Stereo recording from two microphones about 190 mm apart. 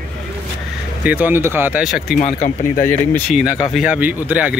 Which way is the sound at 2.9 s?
10° left (ahead or behind).